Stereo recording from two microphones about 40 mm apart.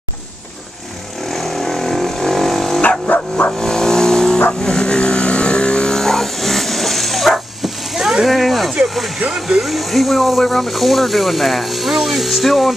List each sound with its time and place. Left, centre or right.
1.3 s vehicle: centre
2.8 s dog: left
3.5 s vehicle: centre
7.3 s dog: centre
8.3 s a sound: centre
8.8 s speech: centre